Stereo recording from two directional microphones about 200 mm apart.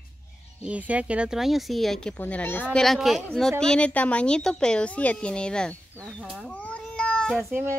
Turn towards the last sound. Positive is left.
turn(degrees=-10)  # may be behind; listen again after turning